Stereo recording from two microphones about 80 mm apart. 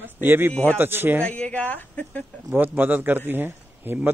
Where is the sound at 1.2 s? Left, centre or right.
Centre.